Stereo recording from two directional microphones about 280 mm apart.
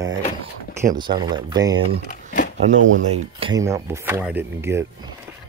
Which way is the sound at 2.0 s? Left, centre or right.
Left.